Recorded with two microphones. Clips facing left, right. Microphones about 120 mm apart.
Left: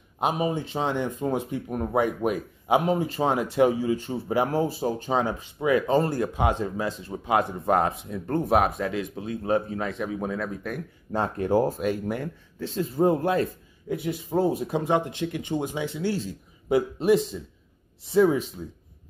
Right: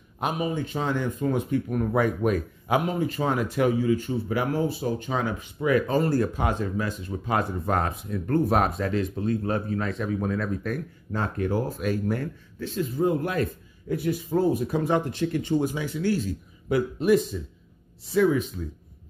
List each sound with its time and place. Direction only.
0.2 s speech: 25° left (ahead or behind)
2.8 s speech: 30° left (ahead or behind)
7.2 s speech: 15° left (ahead or behind)
8.5 s speech: 10° left (ahead or behind)
11.1 s speech: 30° left (ahead or behind)
11.8 s speech: 20° left (ahead or behind)
12.5 s speech: 30° left (ahead or behind)